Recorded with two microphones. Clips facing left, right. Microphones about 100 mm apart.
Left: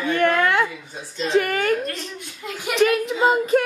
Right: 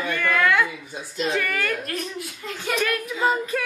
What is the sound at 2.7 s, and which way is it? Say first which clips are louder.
Speech: left 7 dB; 25° left (ahead or behind).